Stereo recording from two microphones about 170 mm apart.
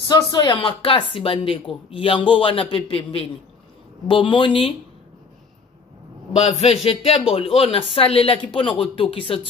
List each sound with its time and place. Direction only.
0.0 s speech: 25° left (ahead or behind)
6.3 s speech: 35° left (ahead or behind)